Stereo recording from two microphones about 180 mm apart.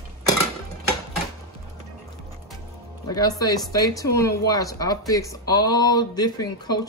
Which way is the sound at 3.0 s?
20° left (ahead or behind).